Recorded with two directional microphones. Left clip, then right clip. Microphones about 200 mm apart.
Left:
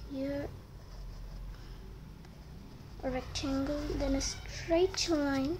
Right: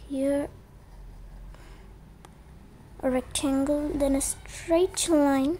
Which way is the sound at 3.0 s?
45° right (ahead or behind).